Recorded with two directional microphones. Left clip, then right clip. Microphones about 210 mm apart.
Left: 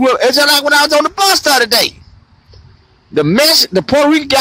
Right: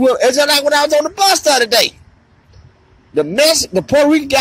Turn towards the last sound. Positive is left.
turn(degrees=10)  # may be behind; listen again after turning